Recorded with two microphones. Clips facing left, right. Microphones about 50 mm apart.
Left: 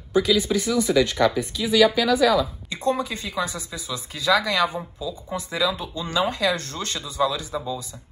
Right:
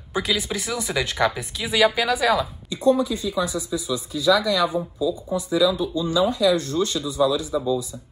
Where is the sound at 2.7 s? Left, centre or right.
Left.